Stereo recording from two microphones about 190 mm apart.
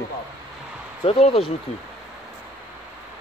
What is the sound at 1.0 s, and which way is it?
Speech, 30° left (ahead or behind).